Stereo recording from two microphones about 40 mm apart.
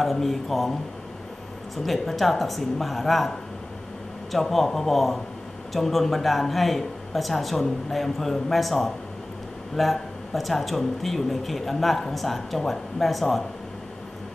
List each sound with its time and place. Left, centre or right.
0.0 s speech: centre
1.8 s speech: centre
4.3 s speech: centre